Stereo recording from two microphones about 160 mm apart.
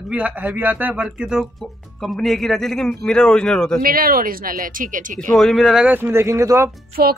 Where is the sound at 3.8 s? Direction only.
65° right (ahead or behind).